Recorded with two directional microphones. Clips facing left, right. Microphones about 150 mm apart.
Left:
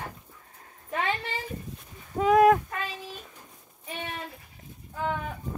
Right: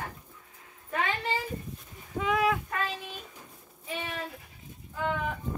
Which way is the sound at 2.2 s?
45° left (ahead or behind).